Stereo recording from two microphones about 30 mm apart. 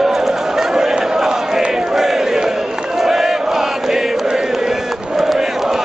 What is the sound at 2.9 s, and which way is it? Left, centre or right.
Chant, centre.